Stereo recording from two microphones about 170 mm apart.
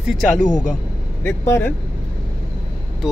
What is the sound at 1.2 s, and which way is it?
Speech, 10° left (ahead or behind).